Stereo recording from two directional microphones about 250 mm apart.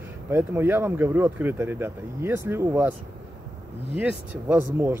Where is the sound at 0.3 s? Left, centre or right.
Centre.